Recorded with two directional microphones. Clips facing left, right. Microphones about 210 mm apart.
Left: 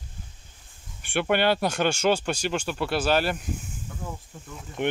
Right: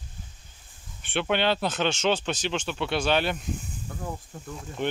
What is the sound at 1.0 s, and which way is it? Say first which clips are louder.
Speech: left 2 dB; 10° left (ahead or behind).